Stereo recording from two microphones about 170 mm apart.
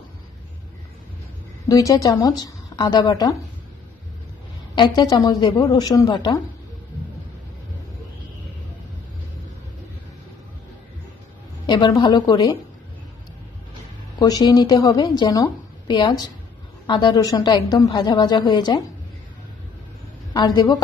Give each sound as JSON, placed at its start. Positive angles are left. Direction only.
{"t": 1.7, "sound": "a woman's voice", "side_deg": 20}
{"t": 4.7, "sound": "a woman's voice", "side_deg": 25}
{"t": 11.6, "sound": "a woman's voice", "side_deg": 25}
{"t": 14.1, "sound": "a woman's voice", "side_deg": 20}
{"t": 20.3, "sound": "a woman's voice", "side_deg": 25}